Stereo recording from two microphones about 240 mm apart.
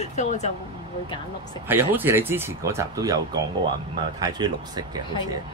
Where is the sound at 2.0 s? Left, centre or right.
Centre.